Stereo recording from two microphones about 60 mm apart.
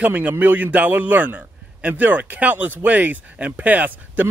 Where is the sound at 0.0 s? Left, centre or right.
Right.